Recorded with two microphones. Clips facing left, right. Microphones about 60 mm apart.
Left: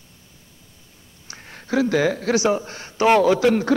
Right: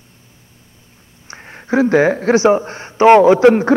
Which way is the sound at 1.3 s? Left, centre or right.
Right.